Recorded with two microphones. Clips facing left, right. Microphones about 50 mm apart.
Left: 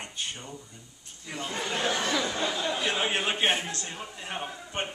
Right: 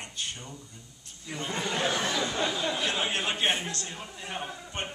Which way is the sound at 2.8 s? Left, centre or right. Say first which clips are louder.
Left 2 dB; centre.